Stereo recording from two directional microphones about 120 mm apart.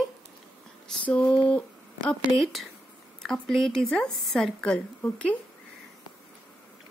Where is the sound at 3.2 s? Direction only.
5° left (ahead or behind).